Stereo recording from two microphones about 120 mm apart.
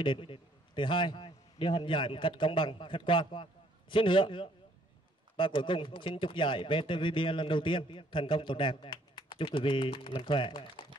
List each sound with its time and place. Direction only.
0.0 s a man's voice: 45° left (ahead or behind)